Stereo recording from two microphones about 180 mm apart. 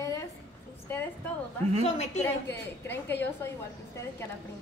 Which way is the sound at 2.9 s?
10° left (ahead or behind).